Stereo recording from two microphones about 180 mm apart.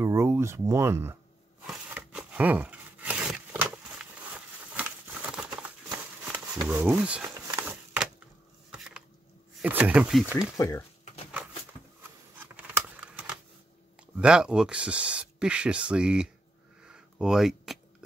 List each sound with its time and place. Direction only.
0.0 s speech: 15° right (ahead or behind)
1.7 s a sound: 5° right (ahead or behind)
6.3 s speech: 5° right (ahead or behind)
7.6 s a sound: 10° right (ahead or behind)
9.6 s speech: 10° right (ahead or behind)
10.6 s speech: 15° left (ahead or behind)
12.4 s scissors: 10° right (ahead or behind)
14.1 s speech: 5° right (ahead or behind)
16.8 s a sound: 5° right (ahead or behind)